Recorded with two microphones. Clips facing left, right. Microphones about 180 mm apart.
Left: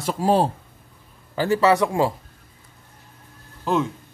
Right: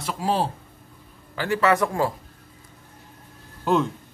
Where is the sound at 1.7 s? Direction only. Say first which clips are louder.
Left 3 dB; 15° left (ahead or behind).